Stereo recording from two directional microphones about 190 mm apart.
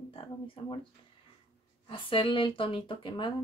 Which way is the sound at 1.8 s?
25° left (ahead or behind).